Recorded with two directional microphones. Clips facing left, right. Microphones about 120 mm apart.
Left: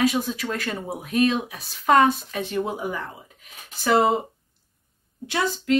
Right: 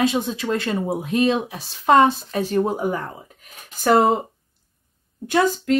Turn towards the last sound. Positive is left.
turn(degrees=-45)  # may be behind; listen again after turning